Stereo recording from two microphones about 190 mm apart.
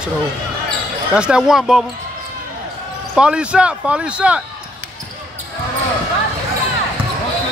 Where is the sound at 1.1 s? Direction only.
5° right (ahead or behind).